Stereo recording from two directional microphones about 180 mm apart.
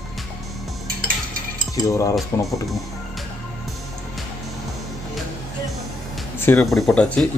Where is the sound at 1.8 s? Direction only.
20° left (ahead or behind).